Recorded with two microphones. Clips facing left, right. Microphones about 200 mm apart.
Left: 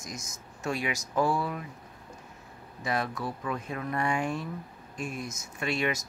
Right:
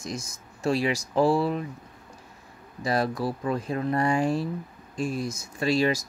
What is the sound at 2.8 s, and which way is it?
Speech, 35° right (ahead or behind).